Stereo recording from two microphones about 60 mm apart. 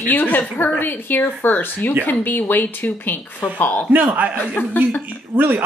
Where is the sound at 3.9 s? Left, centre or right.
Right.